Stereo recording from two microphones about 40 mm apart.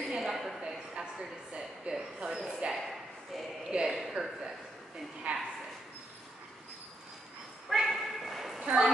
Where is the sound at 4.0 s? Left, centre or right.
Centre.